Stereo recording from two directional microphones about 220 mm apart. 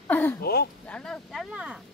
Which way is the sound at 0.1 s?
10° left (ahead or behind).